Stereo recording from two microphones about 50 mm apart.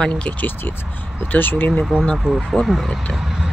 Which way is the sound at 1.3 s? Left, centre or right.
Left.